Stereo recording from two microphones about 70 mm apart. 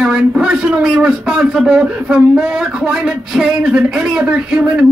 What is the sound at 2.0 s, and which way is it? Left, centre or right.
Speech, centre.